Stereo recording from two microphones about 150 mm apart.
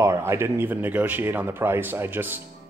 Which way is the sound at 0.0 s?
20° right (ahead or behind).